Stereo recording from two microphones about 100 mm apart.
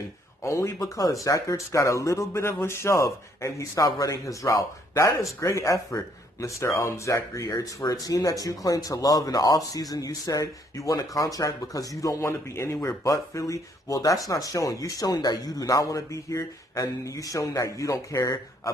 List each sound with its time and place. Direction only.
0.4 s speech: 30° left (ahead or behind)